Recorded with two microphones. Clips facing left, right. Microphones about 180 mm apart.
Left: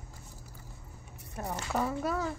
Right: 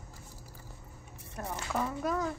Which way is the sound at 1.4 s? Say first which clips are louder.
Left 2 dB; 25° left (ahead or behind).